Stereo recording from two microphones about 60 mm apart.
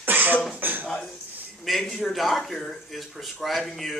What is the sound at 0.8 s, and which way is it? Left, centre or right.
Speech, centre.